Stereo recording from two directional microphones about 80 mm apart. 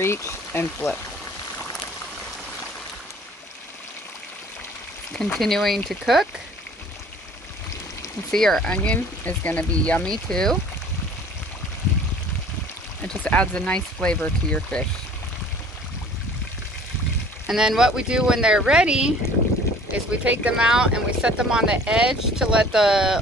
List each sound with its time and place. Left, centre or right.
0.0 s speech: left
0.5 s speech: left
5.1 s speech: centre
8.3 s speech: centre
13.0 s speech: centre
17.5 s speech: centre